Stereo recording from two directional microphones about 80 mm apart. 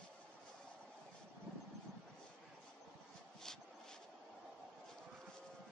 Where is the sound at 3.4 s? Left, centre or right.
Centre.